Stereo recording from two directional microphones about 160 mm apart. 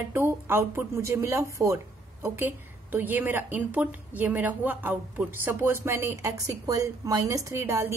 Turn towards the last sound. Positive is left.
turn(degrees=-20)  # may be behind; listen again after turning